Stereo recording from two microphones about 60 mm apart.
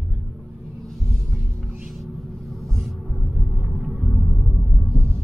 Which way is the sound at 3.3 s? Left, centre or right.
Centre.